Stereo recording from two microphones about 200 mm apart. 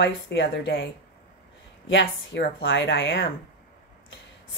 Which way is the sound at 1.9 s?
65° left (ahead or behind).